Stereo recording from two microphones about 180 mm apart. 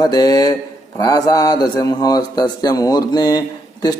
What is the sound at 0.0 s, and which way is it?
Speech, 20° left (ahead or behind).